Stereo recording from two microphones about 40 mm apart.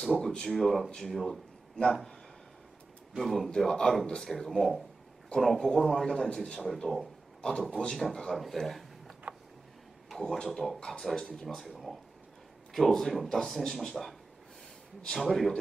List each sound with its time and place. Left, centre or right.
0.2 s a man's voice: centre
3.2 s a man's voice: centre
3.4 s a man's voice: centre
6.6 s a man's voice: centre
9.3 s a sound: right
10.0 s a man's voice: centre
11.4 s a man's voice: centre
13.1 s a man's voice: centre